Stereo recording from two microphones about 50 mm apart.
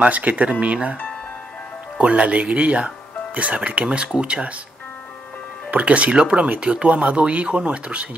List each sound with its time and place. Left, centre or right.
0.0 s speech: right
2.0 s speech: right
5.7 s speech: right